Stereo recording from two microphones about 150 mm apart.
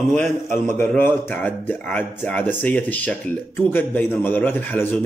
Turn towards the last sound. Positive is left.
turn(degrees=10)  # may be behind; listen again after turning